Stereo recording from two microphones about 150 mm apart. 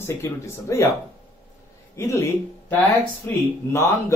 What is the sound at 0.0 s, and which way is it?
Speech, 20° left (ahead or behind).